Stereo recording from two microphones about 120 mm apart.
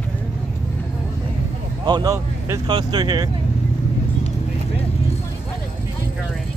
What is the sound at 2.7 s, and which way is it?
Speech, 40° right (ahead or behind).